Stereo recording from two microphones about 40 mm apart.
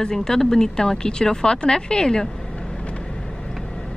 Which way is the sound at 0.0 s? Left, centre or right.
Centre.